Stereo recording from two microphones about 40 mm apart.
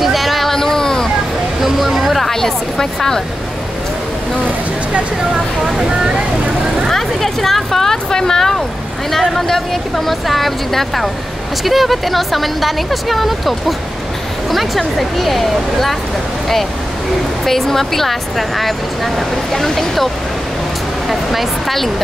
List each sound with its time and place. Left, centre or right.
0.0 s a sound: centre
1.6 s vehicle: centre
5.8 s speech: centre
6.9 s speech: centre
15.0 s speech: centre
17.5 s speech: centre
21.1 s speech: centre